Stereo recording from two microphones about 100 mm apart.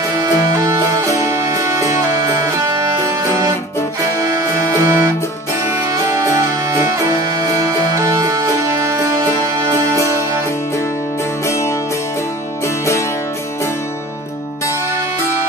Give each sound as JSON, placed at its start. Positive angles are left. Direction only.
{"t": 0.6, "sound": "music", "side_deg": -35}
{"t": 4.2, "sound": "music", "side_deg": -35}
{"t": 11.4, "sound": "music", "side_deg": 30}